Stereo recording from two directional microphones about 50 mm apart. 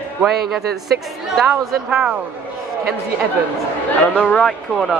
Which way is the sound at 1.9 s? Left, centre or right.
Centre.